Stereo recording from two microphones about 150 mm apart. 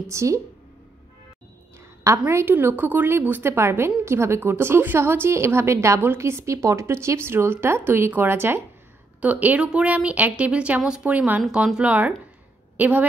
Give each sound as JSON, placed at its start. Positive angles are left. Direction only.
{"t": 0.1, "sound": "speech", "side_deg": -20}
{"t": 2.0, "sound": "a woman's voice", "side_deg": -20}